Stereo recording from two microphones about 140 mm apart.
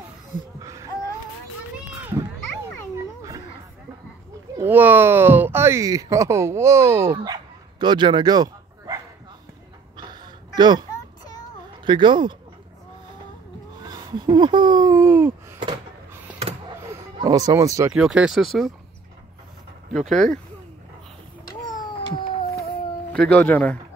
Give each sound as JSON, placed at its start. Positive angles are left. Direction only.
{"t": 0.6, "sound": "a sound", "side_deg": -20}
{"t": 4.6, "sound": "speech", "side_deg": -15}
{"t": 7.3, "sound": "dog", "side_deg": -35}
{"t": 9.9, "sound": "a sound", "side_deg": -30}
{"t": 11.8, "sound": "speech", "side_deg": -35}
{"t": 13.8, "sound": "speech", "side_deg": -30}
{"t": 15.0, "sound": "a sound", "side_deg": -15}
{"t": 17.2, "sound": "speech", "side_deg": -25}
{"t": 17.9, "sound": "speech", "side_deg": -5}
{"t": 19.9, "sound": "speech", "side_deg": 5}
{"t": 22.0, "sound": "cat", "side_deg": 35}
{"t": 23.1, "sound": "speech", "side_deg": 10}